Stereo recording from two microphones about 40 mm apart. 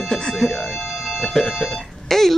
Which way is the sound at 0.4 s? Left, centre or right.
Centre.